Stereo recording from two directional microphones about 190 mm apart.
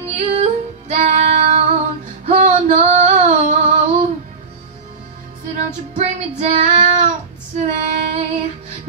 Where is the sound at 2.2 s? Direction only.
40° right (ahead or behind).